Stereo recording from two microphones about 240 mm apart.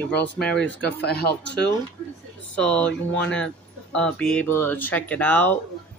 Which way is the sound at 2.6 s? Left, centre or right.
Centre.